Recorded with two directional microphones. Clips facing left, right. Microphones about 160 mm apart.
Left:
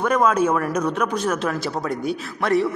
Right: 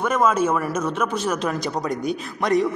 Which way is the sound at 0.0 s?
5° right (ahead or behind).